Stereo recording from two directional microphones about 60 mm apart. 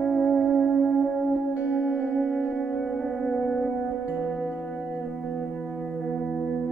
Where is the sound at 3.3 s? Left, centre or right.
Centre.